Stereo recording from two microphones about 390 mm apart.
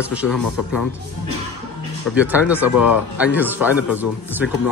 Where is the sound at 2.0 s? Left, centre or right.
Centre.